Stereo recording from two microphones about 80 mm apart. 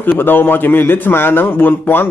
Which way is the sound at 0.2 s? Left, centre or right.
Left.